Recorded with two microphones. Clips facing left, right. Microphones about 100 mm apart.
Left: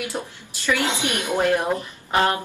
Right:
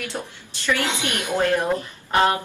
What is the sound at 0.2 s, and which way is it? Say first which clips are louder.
A woman's voice: left 1 dB; 20° left (ahead or behind).